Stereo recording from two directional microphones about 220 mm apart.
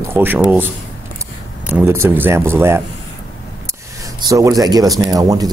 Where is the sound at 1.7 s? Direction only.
10° right (ahead or behind).